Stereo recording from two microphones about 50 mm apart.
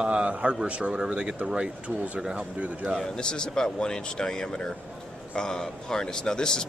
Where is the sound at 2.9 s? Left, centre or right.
Centre.